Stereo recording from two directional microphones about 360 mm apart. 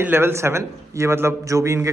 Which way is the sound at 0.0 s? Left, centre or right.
Centre.